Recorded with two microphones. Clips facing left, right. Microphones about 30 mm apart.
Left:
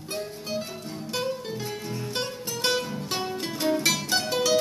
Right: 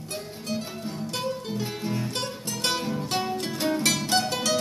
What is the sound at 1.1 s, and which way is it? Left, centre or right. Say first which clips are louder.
Music: left 2 dB; centre.